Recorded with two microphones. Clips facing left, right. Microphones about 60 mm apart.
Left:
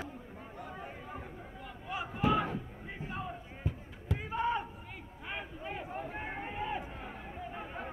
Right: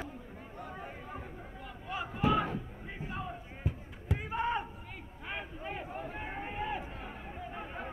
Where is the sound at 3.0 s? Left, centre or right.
Centre.